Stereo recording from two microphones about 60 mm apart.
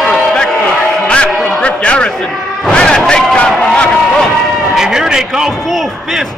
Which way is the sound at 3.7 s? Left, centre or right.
Centre.